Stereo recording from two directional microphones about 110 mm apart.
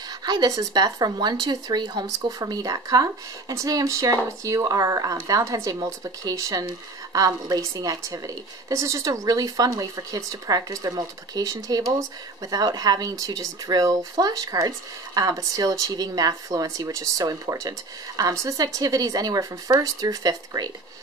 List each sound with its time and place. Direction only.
0.2 s speech: 40° right (ahead or behind)